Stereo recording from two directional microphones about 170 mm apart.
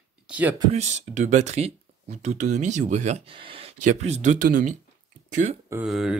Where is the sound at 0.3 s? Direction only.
10° right (ahead or behind).